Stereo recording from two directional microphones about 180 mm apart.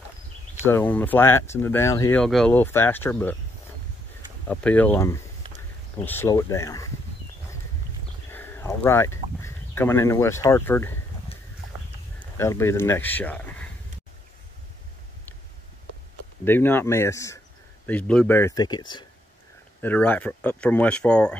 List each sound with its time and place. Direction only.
0.7 s speech: 10° left (ahead or behind)
2.2 s speech: 5° left (ahead or behind)
4.5 s speech: 5° left (ahead or behind)
8.3 s speech: 10° left (ahead or behind)
12.2 s speech: 15° left (ahead or behind)
16.4 s speech: 10° left (ahead or behind)
19.8 s speech: 10° left (ahead or behind)